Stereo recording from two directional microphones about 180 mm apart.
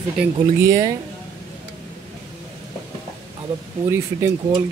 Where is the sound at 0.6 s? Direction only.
20° right (ahead or behind).